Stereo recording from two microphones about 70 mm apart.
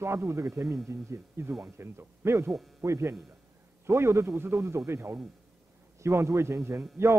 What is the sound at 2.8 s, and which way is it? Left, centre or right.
Speech, right.